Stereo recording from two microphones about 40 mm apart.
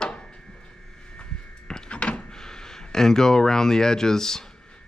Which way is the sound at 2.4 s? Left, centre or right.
Centre.